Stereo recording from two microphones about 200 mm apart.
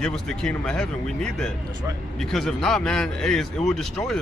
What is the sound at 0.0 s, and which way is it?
A man's voice, centre (ahead or behind).